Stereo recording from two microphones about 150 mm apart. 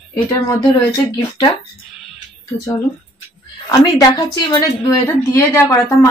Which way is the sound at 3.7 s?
25° left (ahead or behind).